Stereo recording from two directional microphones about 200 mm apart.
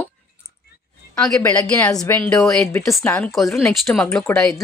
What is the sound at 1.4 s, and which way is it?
Speech, 15° left (ahead or behind).